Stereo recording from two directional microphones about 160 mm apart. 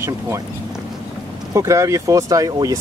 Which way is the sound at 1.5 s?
20° right (ahead or behind).